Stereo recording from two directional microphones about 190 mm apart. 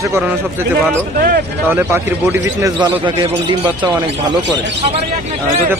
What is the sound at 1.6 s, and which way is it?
Speech, 10° right (ahead or behind).